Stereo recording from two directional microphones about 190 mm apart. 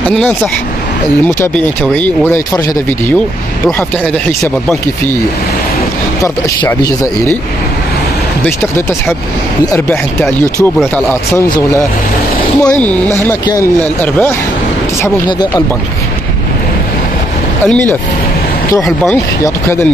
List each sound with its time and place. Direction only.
0.1 s speech: 5° left (ahead or behind)
2.0 s speech: 10° left (ahead or behind)
10.2 s speech: 10° left (ahead or behind)
12.7 s speech: 10° left (ahead or behind)
17.6 s speech: 5° left (ahead or behind)
19.4 s speech: 15° left (ahead or behind)